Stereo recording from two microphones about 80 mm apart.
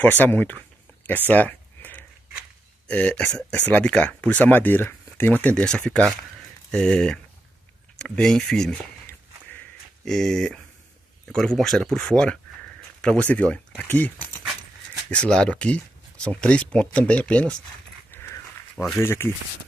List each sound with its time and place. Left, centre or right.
0.0 s a sound: left
2.9 s speech: centre
9.0 s walk: left
10.0 s speech: centre
18.1 s dog: left
18.9 s speech: left